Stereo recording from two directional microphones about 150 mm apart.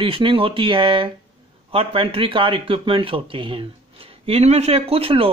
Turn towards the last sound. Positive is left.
turn(degrees=-40)  # may be behind; listen again after turning